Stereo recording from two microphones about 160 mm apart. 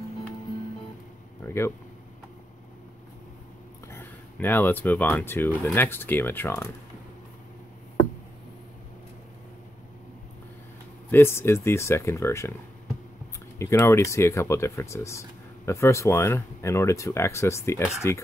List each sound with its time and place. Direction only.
1.4 s a sound: 15° left (ahead or behind)
3.9 s speech: 10° left (ahead or behind)
11.1 s speech: 15° left (ahead or behind)
13.6 s speech: 15° left (ahead or behind)